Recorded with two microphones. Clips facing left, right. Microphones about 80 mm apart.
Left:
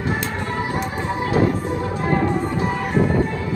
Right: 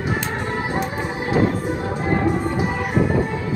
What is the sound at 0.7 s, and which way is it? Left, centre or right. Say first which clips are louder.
Music: even; right.